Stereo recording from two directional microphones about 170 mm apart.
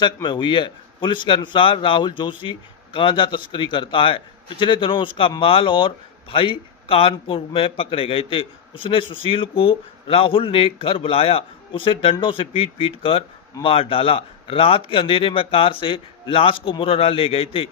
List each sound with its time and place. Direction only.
0.0 s a man's voice: 25° left (ahead or behind)